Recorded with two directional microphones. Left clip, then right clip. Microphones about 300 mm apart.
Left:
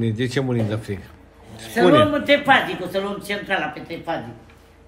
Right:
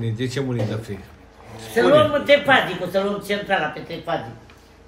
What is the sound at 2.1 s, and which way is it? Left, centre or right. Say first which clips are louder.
Speech: right 1 dB; centre.